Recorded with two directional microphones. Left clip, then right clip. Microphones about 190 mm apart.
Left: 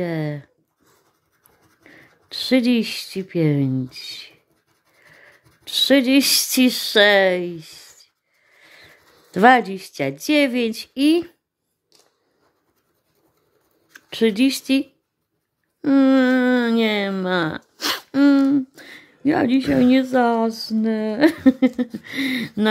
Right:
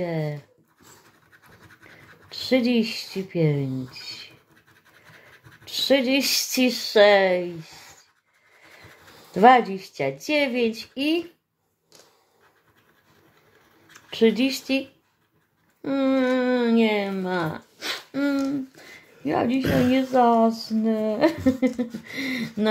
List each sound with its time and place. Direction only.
0.0 s dog: 35° left (ahead or behind)
2.3 s speech: 40° left (ahead or behind)
5.7 s speech: 40° left (ahead or behind)
9.3 s speech: 35° left (ahead or behind)
14.1 s speech: 35° left (ahead or behind)